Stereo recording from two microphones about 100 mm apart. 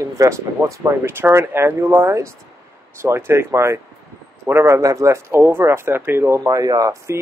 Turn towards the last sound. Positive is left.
turn(degrees=-35)  # may be behind; listen again after turning